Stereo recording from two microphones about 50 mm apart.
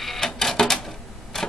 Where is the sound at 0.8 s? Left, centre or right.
Centre.